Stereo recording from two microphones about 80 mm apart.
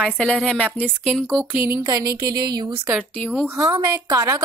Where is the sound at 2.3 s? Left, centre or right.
Right.